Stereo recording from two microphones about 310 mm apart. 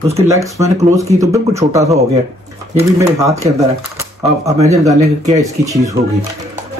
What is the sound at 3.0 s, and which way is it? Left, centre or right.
Speech, centre.